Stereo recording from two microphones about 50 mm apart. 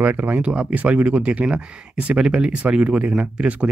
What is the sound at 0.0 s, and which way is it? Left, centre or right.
Speech, right.